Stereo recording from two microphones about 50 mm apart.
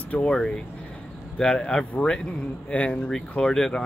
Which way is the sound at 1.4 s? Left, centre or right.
Centre.